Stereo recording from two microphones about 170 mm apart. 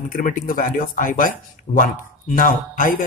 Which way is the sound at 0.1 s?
55° left (ahead or behind).